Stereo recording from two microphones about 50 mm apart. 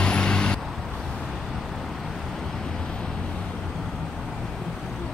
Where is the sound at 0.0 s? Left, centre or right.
Centre.